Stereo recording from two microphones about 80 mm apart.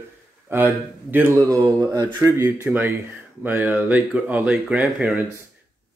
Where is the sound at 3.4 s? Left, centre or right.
Right.